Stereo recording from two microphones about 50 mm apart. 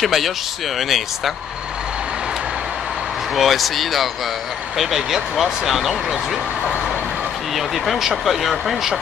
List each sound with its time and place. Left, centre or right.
0.0 s speech: centre
3.3 s speech: centre
7.5 s speech: centre